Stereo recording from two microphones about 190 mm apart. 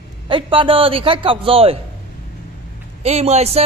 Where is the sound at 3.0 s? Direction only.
35° right (ahead or behind).